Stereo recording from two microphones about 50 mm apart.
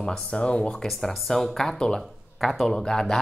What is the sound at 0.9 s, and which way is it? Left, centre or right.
Speech, centre.